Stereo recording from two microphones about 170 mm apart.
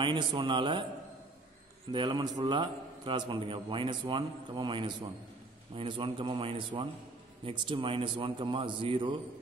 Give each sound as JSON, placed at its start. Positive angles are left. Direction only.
{"t": 0.0, "sound": "a man's voice", "side_deg": -30}
{"t": 1.9, "sound": "a man's voice", "side_deg": -25}